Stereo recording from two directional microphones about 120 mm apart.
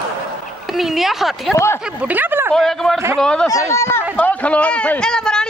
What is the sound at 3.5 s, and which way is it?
A man's voice, 25° left (ahead or behind).